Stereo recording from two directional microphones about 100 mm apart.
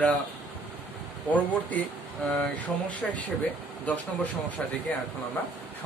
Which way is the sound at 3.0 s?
10° left (ahead or behind).